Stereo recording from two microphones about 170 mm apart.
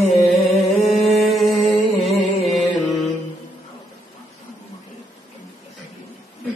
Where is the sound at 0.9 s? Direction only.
Centre (ahead or behind).